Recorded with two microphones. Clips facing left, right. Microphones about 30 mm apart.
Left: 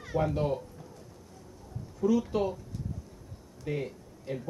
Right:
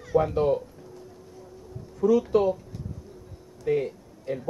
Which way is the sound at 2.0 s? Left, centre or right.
Centre.